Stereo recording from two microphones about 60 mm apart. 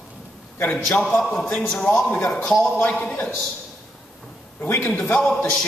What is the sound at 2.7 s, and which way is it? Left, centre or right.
Speech, left.